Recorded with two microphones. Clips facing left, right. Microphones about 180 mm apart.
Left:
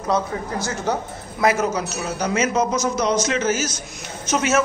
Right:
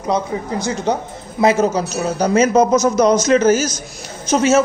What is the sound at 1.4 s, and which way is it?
Speech, 30° right (ahead or behind).